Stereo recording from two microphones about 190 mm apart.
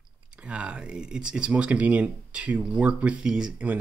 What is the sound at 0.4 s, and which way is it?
Speech, 5° right (ahead or behind).